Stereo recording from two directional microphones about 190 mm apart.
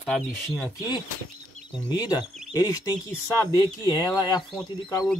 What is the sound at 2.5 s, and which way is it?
Speech, 20° left (ahead or behind).